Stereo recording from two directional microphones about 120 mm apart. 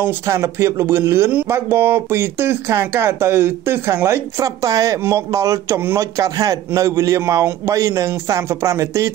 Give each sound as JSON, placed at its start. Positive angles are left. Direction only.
{"t": 0.0, "sound": "speech", "side_deg": -20}